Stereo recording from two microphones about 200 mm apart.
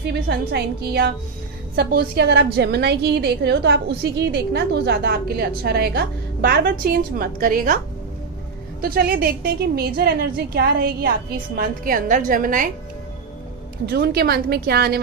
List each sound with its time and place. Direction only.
0.1 s a woman's voice: 55° right (ahead or behind)
8.8 s a woman's voice: 45° right (ahead or behind)
13.8 s a woman's voice: 50° right (ahead or behind)